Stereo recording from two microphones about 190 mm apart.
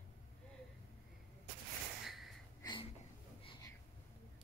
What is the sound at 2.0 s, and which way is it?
Gasp, centre (ahead or behind).